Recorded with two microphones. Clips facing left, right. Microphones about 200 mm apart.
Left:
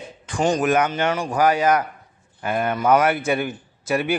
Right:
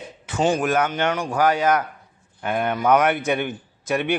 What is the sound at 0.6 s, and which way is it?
A man's voice, 10° left (ahead or behind).